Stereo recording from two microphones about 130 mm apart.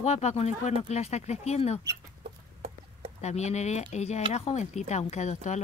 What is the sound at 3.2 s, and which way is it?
Speech, 60° left (ahead or behind).